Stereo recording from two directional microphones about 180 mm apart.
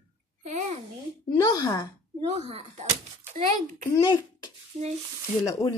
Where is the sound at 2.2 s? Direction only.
35° right (ahead or behind).